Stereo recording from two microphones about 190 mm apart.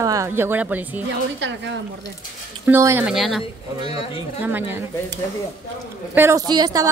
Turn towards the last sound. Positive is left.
turn(degrees=-20)  # may be behind; listen again after turning